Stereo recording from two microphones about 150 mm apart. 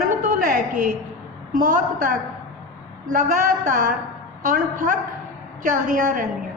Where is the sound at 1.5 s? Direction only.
65° right (ahead or behind).